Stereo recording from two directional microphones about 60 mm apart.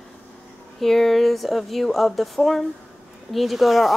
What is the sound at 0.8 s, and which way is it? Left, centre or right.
Speech, centre.